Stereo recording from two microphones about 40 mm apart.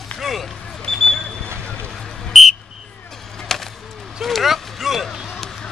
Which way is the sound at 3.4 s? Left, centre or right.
Centre.